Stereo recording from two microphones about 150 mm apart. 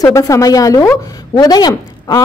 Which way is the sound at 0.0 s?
20° left (ahead or behind).